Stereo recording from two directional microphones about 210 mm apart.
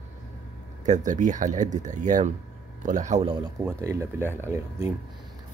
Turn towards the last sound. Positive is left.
turn(degrees=-15)  # may be behind; listen again after turning